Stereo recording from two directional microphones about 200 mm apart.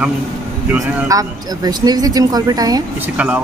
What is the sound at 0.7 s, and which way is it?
Speech, 15° right (ahead or behind).